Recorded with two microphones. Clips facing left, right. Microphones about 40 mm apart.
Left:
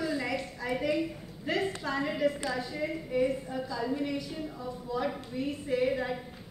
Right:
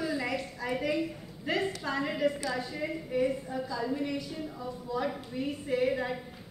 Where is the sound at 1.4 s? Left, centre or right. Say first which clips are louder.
Even; centre.